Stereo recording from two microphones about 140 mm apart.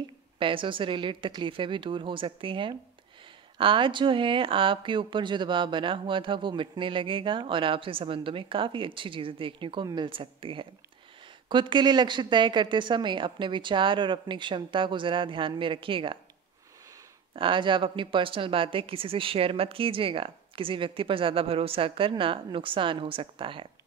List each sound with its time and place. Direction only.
0.4 s speech: 40° right (ahead or behind)
17.4 s speech: 35° right (ahead or behind)